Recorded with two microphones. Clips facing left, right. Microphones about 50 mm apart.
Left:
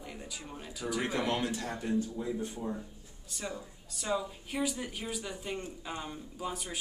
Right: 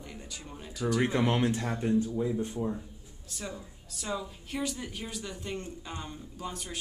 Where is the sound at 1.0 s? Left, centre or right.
Right.